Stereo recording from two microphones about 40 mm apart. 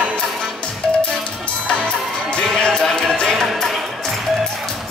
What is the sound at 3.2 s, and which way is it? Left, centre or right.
Music, centre.